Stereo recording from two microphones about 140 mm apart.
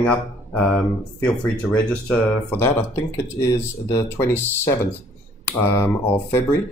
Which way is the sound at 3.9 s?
15° left (ahead or behind).